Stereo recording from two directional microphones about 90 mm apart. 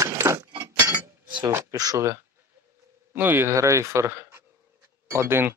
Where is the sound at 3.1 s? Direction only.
25° right (ahead or behind).